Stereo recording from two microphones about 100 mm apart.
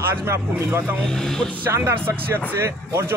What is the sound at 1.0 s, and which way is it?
Speech, 5° left (ahead or behind).